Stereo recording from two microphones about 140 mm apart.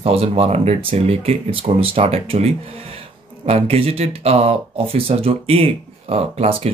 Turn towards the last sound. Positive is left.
turn(degrees=-45)  # may be behind; listen again after turning